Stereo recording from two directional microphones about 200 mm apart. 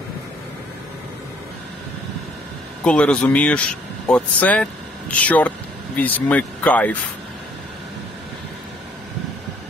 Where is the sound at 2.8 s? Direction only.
5° left (ahead or behind).